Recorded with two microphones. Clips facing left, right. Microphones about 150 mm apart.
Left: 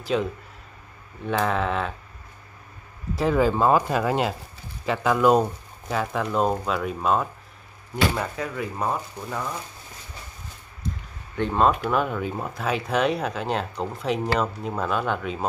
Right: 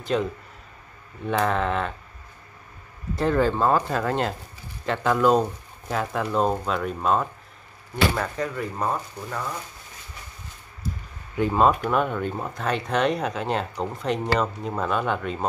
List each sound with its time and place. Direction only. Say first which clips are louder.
0.0 s speech: even; centre (ahead or behind)
3.2 s speech: left 1 dB; 5° left (ahead or behind)
11.3 s speech: right 1 dB; 5° right (ahead or behind)